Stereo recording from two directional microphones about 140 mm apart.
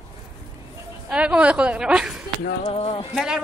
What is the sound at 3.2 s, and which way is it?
Speech, 5° right (ahead or behind).